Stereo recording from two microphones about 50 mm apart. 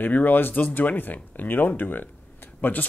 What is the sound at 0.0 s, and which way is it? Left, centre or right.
Speech, left.